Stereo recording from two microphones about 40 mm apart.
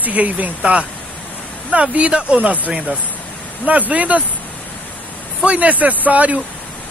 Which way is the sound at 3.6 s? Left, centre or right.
Right.